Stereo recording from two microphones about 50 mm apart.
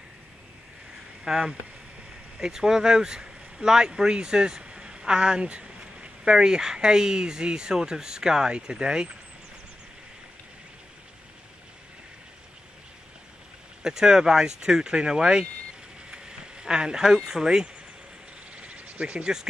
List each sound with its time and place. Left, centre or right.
1.2 s speech: centre
13.8 s speech: centre
16.1 s a sound: centre